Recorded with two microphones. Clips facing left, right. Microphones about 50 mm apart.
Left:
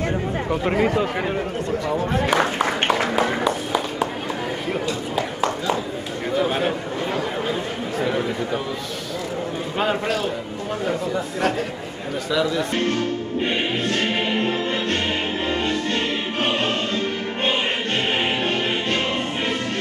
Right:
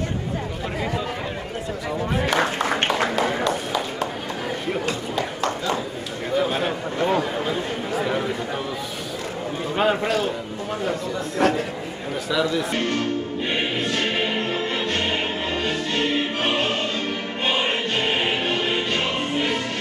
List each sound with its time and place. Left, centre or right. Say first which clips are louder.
0.7 s speech: left 6 dB; left
2.2 s a man's voice: left 1 dB; centre
5.1 s a sound: left 2 dB; centre
8.0 s chatter: left 2 dB; centre
9.8 s speech: right 2 dB; centre